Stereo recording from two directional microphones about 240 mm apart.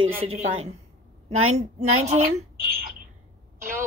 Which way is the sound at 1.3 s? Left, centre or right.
Right.